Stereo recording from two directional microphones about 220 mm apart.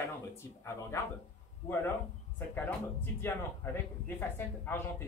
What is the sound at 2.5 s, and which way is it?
Speech, 10° left (ahead or behind).